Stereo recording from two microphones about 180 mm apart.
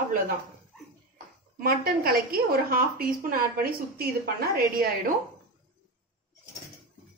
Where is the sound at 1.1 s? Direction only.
55° right (ahead or behind).